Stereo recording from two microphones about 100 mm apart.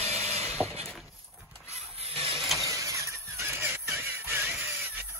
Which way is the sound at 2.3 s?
Centre (ahead or behind).